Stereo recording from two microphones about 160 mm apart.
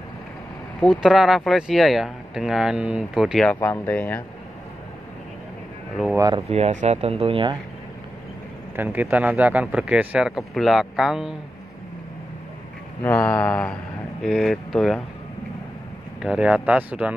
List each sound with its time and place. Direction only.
0.7 s speech: centre (ahead or behind)
3.6 s speech: 15° left (ahead or behind)
6.1 s speech: 25° right (ahead or behind)
6.5 s speech: 45° right (ahead or behind)
8.7 s speech: 10° right (ahead or behind)
13.0 s speech: 10° left (ahead or behind)
16.2 s speech: 5° right (ahead or behind)